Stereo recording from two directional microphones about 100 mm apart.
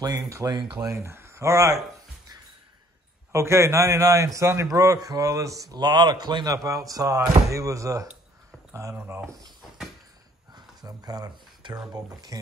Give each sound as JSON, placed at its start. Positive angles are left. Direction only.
{"t": 0.3, "sound": "speech", "side_deg": -35}
{"t": 0.6, "sound": "speech", "side_deg": -50}
{"t": 0.8, "sound": "speech", "side_deg": -30}
{"t": 3.3, "sound": "speech", "side_deg": -30}
{"t": 9.3, "sound": "a sound", "side_deg": 0}
{"t": 10.5, "sound": "speech", "side_deg": -40}